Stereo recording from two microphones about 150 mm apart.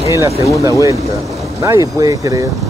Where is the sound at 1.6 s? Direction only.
20° right (ahead or behind).